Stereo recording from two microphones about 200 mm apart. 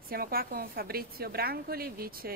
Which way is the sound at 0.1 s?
50° right (ahead or behind).